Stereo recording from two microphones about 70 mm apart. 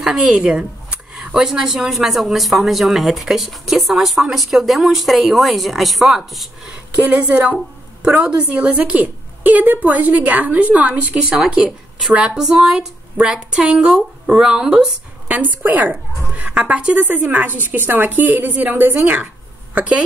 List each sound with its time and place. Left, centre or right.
0.0 s speech: centre
7.1 s a woman's voice: centre
15.2 s a woman's voice: right